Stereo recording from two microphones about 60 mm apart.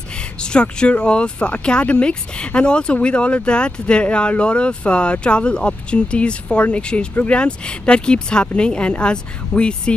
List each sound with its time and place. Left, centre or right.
0.1 s speech: centre